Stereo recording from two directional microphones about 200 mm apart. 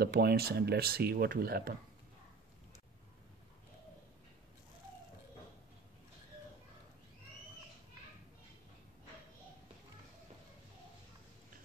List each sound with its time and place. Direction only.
0.0 s speech: 50° right (ahead or behind)